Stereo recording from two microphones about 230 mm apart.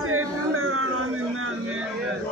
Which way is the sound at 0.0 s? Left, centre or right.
Right.